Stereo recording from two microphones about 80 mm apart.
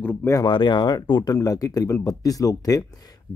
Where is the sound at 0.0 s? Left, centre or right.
Left.